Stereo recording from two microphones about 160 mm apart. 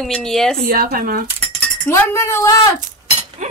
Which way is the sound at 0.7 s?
65° right (ahead or behind).